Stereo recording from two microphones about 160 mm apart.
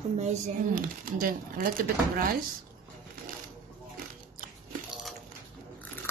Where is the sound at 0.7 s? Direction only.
60° right (ahead or behind).